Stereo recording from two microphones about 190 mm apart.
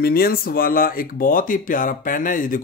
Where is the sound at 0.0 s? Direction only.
50° left (ahead or behind).